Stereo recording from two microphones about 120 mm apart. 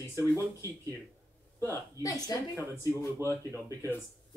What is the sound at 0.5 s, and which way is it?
Speech, 25° right (ahead or behind).